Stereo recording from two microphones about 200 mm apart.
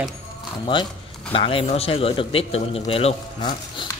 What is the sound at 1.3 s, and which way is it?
A man's voice, 25° left (ahead or behind).